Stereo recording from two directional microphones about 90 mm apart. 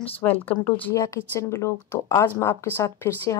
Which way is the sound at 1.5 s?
30° left (ahead or behind).